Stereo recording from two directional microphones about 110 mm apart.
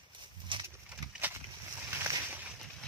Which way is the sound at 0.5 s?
50° right (ahead or behind).